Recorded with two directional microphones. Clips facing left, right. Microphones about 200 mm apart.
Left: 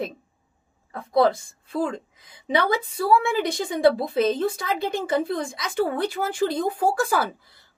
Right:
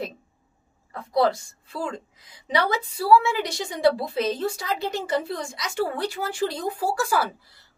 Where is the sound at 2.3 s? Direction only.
55° left (ahead or behind).